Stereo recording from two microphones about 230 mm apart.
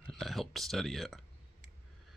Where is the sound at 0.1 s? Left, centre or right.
Centre.